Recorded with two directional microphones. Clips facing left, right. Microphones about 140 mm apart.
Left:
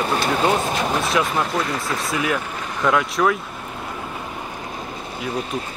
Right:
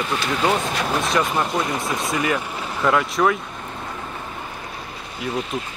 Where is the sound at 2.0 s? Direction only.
Centre (ahead or behind).